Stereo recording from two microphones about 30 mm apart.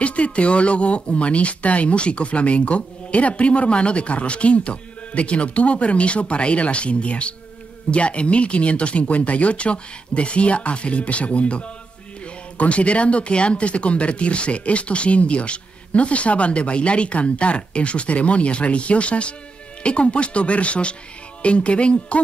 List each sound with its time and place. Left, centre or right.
0.0 s speech: left